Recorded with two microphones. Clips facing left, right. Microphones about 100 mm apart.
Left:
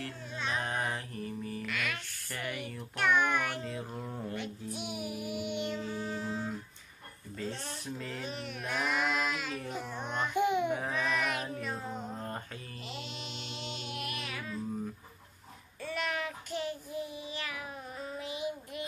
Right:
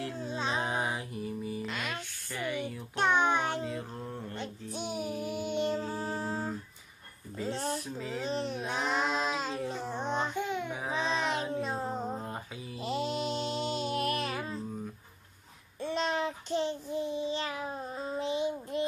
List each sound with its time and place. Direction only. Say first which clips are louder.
0.2 s music: right 3 dB; 30° right (ahead or behind)
0.7 s mantra: right 2 dB; 10° right (ahead or behind)
1.6 s a sound: right 1 dB; 25° right (ahead or behind)
2.3 s a sound: right 4 dB; centre (ahead or behind)
3.0 s music: right 2 dB; 30° right (ahead or behind)
3.6 s a sound: right 2 dB; 5° left (ahead or behind)
4.7 s music: right 6 dB; 30° right (ahead or behind)
8.2 s child singing: right 6 dB; 30° right (ahead or behind)
10.3 s baby cry: left 5 dB; 15° left (ahead or behind)
10.9 s child singing: right 2 dB; 25° right (ahead or behind)
11.5 s music: right 5 dB; 30° right (ahead or behind)
15.8 s child singing: right 5 dB; 25° right (ahead or behind)